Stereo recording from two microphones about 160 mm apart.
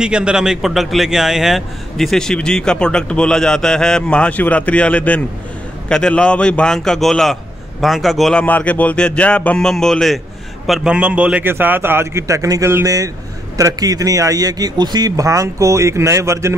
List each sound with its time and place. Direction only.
0.0 s a man's voice: 5° right (ahead or behind)